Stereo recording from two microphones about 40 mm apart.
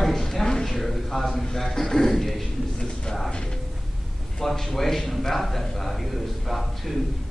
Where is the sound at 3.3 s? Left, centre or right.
Centre.